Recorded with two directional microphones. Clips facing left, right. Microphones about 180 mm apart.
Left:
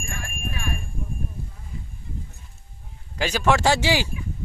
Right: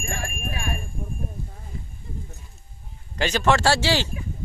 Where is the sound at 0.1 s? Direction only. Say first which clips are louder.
Right 4 dB; 40° right (ahead or behind).